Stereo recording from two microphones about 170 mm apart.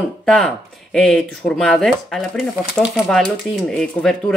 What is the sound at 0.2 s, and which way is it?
Speech, 5° left (ahead or behind).